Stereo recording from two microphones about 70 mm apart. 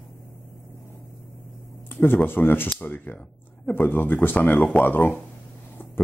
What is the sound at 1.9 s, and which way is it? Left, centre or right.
Speech, left.